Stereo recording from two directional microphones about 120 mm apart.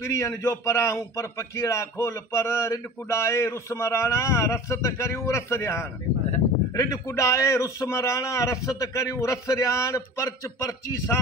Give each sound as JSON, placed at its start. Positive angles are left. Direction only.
{"t": 0.0, "sound": "a man's voice", "side_deg": 25}